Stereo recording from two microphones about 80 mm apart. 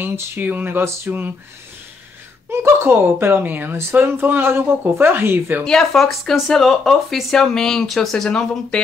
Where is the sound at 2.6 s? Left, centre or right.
Right.